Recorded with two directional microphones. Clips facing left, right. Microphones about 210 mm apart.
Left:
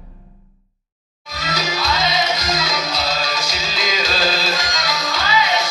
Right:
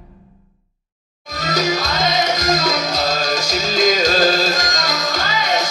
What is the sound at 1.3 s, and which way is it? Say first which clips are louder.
Music: right 5 dB; 45° right (ahead or behind).